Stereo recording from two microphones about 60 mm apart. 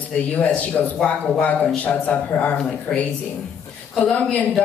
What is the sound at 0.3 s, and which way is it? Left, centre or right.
Speech, left.